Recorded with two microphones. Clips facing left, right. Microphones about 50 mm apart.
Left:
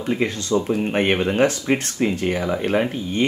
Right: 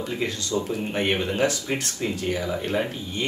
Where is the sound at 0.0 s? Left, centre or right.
Left.